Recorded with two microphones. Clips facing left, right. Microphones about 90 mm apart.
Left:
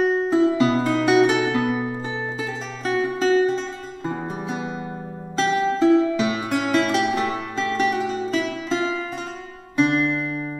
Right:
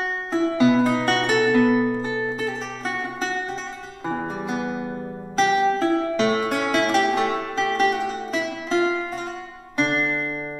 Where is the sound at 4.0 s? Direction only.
50° right (ahead or behind).